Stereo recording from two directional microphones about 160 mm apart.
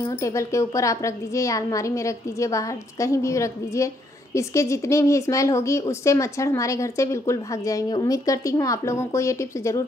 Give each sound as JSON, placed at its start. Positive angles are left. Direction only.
{"t": 0.0, "sound": "a woman's voice", "side_deg": 20}